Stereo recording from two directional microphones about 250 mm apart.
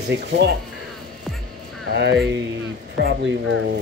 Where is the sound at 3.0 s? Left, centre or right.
Right.